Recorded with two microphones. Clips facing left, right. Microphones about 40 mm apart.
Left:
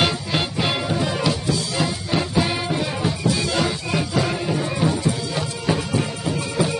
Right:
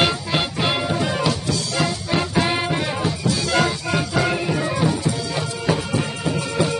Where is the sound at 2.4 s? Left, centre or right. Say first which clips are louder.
Right 2 dB; right.